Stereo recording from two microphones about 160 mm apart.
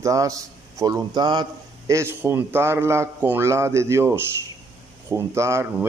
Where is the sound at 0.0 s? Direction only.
20° right (ahead or behind).